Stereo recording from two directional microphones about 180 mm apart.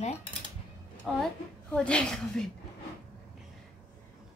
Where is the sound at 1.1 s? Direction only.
Centre (ahead or behind).